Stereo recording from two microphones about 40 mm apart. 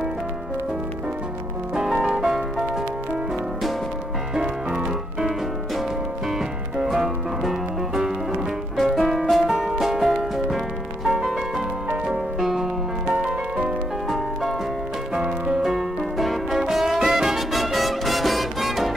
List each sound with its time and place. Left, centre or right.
2.0 s music: centre
4.4 s music: right
6.8 s music: centre
12.4 s music: centre
14.0 s music: centre
15.2 s music: right
15.6 s music: centre